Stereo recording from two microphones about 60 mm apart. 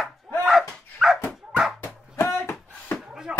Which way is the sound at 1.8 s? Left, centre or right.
Left.